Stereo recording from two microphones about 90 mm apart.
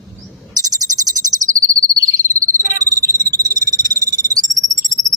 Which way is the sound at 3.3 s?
40° right (ahead or behind).